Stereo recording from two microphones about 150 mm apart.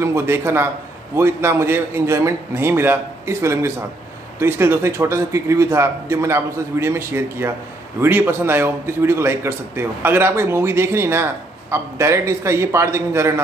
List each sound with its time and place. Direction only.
0.0 s a man's voice: 15° right (ahead or behind)